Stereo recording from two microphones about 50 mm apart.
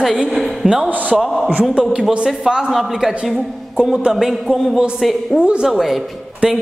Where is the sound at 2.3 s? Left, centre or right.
Centre.